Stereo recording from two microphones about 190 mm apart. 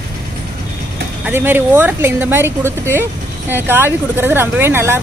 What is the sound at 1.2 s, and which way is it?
Speech, 10° right (ahead or behind).